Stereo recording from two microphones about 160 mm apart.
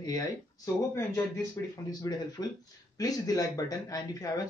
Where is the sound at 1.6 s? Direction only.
20° left (ahead or behind).